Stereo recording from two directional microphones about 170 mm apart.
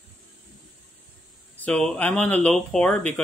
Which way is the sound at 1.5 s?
5° left (ahead or behind).